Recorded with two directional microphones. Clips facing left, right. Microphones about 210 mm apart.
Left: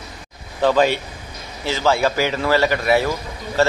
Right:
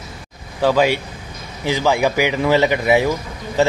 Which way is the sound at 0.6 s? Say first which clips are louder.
Right 1 dB; 10° right (ahead or behind).